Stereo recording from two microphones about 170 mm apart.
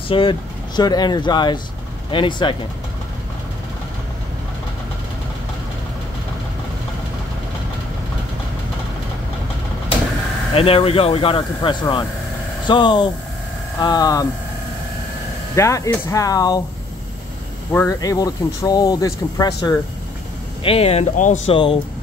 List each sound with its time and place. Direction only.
0.1 s speech: 30° left (ahead or behind)
10.5 s speech: 35° left (ahead or behind)
15.5 s speech: 20° left (ahead or behind)
17.7 s speech: 20° left (ahead or behind)
20.6 s speech: 35° left (ahead or behind)